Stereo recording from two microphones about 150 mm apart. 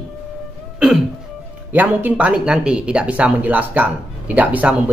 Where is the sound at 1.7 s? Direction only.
10° right (ahead or behind).